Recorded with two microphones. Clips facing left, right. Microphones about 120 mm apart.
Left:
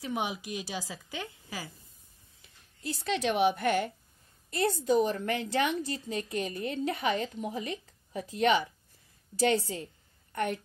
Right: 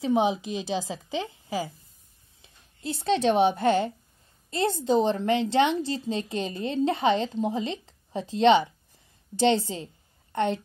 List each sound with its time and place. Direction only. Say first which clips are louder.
0.0 s a woman's voice: right 10 dB; 25° right (ahead or behind)